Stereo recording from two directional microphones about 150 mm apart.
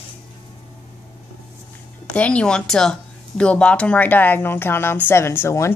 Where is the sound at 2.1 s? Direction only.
10° left (ahead or behind).